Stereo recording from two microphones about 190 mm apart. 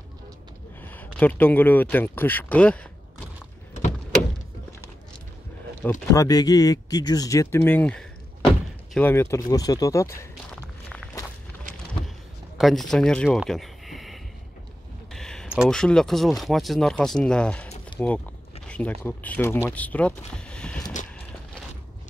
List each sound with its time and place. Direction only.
0.8 s speech: 10° left (ahead or behind)
5.8 s speech: 15° left (ahead or behind)
12.5 s speech: centre (ahead or behind)